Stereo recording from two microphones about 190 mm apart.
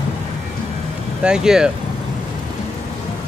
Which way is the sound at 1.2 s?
5° right (ahead or behind).